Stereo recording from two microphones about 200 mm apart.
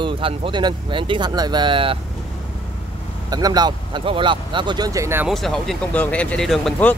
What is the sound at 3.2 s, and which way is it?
Speech, 20° right (ahead or behind).